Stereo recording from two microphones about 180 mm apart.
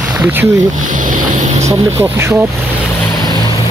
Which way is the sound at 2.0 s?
15° right (ahead or behind).